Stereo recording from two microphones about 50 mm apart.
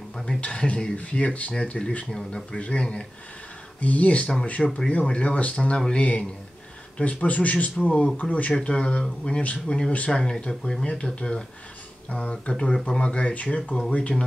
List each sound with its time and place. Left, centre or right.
0.4 s speech: left